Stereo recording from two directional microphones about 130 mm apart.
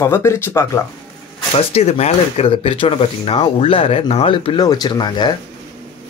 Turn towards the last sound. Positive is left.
turn(degrees=35)  # may be behind; listen again after turning